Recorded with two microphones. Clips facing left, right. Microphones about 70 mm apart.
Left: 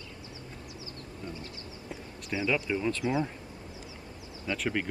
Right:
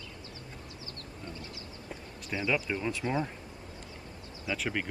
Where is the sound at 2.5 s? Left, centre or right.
Centre.